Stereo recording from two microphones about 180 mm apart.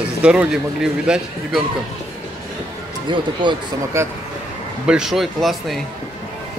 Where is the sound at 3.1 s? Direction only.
25° right (ahead or behind).